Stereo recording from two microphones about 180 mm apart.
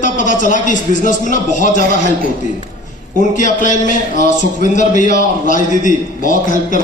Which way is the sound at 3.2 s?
45° left (ahead or behind).